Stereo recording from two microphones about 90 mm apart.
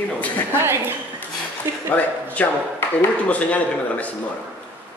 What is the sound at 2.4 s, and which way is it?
Speech, 20° left (ahead or behind).